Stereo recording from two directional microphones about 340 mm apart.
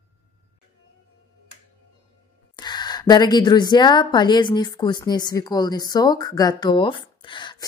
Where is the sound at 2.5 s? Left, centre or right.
Centre.